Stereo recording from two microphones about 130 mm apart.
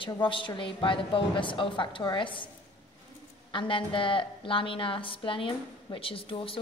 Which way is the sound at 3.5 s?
40° left (ahead or behind).